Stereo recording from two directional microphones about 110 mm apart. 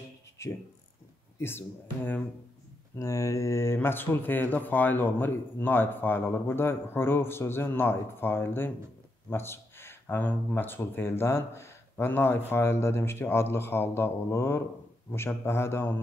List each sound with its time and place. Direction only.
0.4 s speech: 25° left (ahead or behind)
3.0 s speech: 30° left (ahead or behind)